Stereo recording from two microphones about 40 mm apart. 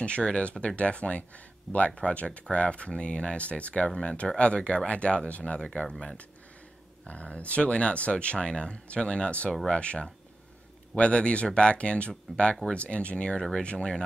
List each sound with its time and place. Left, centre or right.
0.0 s speech: left
3.8 s speech: left
7.1 s speech: left